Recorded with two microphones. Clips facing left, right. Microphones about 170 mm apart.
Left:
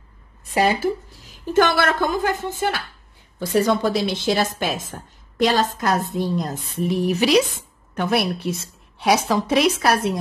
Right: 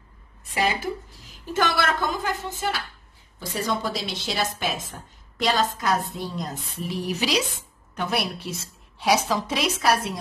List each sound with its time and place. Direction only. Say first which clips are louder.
1.5 s a woman's voice: left 6 dB; 55° left (ahead or behind)